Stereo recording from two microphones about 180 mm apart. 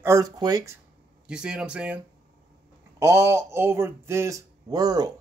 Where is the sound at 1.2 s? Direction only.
5° right (ahead or behind).